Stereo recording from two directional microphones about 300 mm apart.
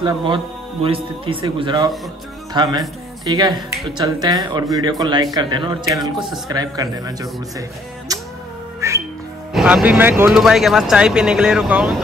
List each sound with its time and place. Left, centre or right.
0.0 s speech: centre
8.1 s music: centre
9.5 s speech: centre